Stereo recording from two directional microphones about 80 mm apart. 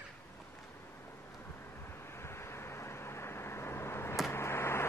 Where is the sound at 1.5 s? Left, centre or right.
Left.